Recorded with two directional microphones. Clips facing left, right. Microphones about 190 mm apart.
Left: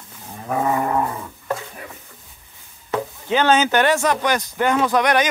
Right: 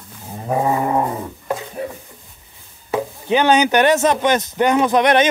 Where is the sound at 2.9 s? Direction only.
15° right (ahead or behind).